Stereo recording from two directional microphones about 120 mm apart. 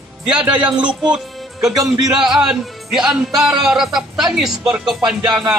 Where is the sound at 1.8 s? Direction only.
35° right (ahead or behind).